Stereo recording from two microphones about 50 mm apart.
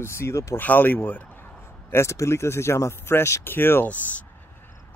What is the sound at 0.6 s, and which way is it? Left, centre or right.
Speech, left.